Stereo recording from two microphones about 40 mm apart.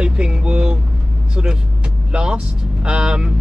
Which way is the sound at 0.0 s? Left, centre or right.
Right.